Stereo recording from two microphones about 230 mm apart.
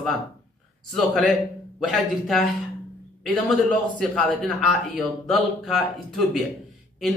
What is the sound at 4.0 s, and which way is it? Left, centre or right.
A man's voice, centre.